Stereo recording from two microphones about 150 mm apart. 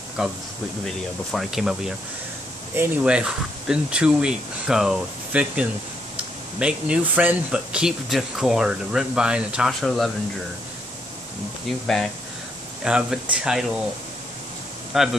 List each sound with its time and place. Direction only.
0.2 s speech: 5° right (ahead or behind)
12.8 s speech: 5° right (ahead or behind)
14.9 s speech: centre (ahead or behind)